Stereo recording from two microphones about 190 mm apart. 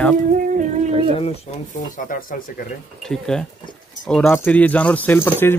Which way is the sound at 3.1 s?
5° left (ahead or behind).